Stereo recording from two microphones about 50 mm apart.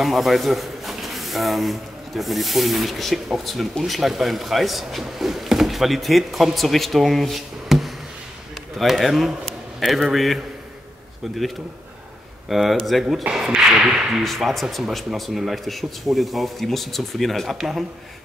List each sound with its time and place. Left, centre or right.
0.0 s speech: centre
9.0 s a man's voice: centre
12.4 s speech: centre
13.3 s speech: right
13.7 s speech: centre
14.2 s speech: centre